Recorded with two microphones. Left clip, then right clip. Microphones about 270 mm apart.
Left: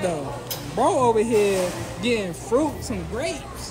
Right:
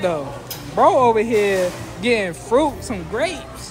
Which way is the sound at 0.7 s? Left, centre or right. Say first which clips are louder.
Right 6 dB; centre.